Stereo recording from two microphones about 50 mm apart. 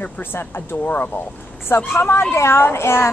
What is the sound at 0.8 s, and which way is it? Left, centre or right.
Speech, left.